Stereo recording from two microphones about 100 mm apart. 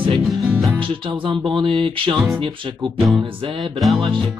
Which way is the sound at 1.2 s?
55° right (ahead or behind).